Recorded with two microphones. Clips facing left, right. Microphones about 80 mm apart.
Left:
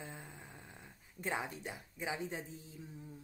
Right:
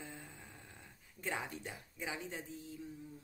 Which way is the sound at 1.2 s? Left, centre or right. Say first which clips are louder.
Left 2 dB; centre.